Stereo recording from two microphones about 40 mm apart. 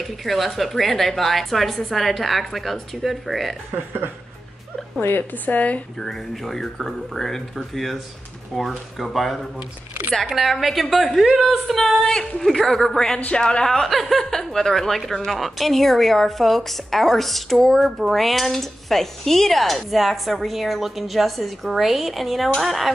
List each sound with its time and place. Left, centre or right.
0.0 s cutlery: centre
5.3 s speech: left
5.9 s speech: centre
8.5 s cutlery: centre
12.0 s speech: centre
13.8 s speech: centre
15.2 s cutlery: centre